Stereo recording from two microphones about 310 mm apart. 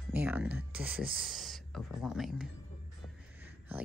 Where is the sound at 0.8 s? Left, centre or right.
Right.